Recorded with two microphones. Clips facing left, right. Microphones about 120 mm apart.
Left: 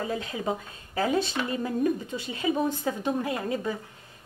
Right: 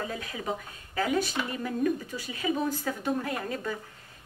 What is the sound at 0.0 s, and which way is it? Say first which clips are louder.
A woman's voice: left 4 dB; 25° left (ahead or behind).